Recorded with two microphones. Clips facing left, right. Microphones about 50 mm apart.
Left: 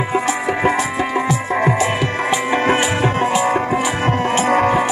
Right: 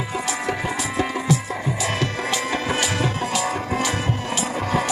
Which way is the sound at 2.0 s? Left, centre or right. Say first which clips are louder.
Left 5 dB; left.